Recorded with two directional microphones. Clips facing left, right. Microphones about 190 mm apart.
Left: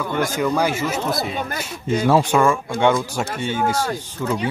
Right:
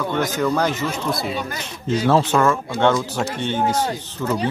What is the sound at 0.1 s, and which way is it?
Speech, 10° left (ahead or behind).